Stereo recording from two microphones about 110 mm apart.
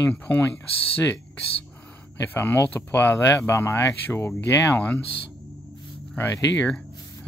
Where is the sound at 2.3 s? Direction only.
20° left (ahead or behind).